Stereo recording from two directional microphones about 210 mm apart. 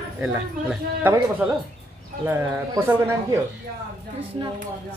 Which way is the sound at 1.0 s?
10° right (ahead or behind).